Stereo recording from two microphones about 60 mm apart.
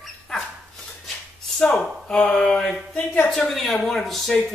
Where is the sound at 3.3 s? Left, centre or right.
Centre.